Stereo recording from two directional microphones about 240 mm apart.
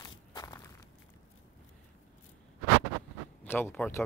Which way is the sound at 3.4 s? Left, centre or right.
Centre.